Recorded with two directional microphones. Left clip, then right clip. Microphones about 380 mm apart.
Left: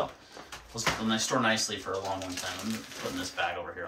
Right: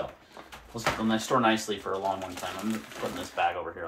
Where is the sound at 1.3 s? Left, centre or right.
Centre.